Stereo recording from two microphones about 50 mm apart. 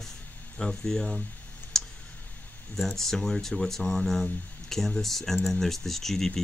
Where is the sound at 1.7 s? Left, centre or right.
Centre.